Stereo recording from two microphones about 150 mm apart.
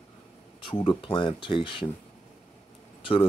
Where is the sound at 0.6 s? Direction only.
35° left (ahead or behind).